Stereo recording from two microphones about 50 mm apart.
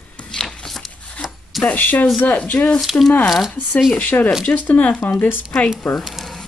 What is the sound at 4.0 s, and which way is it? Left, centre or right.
Speech, left.